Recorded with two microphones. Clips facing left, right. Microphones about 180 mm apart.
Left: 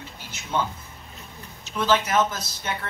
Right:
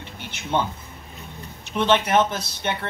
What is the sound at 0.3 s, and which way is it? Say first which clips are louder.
Music: right 5 dB; 25° right (ahead or behind).